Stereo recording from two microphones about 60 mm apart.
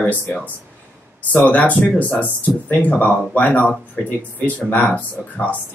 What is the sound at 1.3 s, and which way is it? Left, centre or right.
Speech, left.